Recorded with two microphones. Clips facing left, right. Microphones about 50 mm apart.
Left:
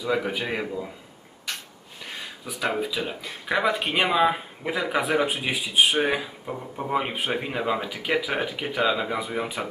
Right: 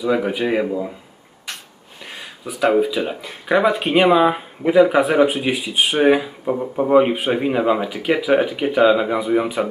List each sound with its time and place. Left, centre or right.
0.2 s speech: centre
2.4 s speech: centre
5.3 s speech: centre
5.9 s speech: centre
6.4 s speech: right
6.9 s speech: centre